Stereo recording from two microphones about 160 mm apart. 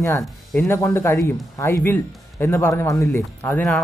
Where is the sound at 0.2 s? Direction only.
Centre (ahead or behind).